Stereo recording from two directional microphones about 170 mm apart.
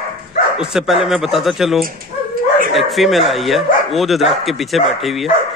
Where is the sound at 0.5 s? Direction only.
Centre (ahead or behind).